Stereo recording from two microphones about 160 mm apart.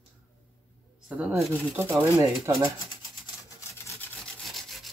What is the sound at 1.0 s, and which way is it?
Speech, 5° right (ahead or behind).